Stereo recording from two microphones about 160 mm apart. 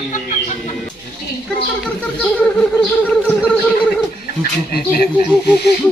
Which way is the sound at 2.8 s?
10° left (ahead or behind).